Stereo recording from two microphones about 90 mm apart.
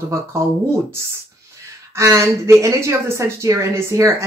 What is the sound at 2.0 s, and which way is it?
A woman's voice, 35° right (ahead or behind).